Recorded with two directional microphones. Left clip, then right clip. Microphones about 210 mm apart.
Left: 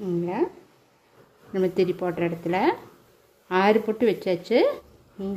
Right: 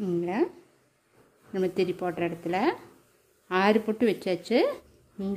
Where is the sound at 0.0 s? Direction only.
15° right (ahead or behind).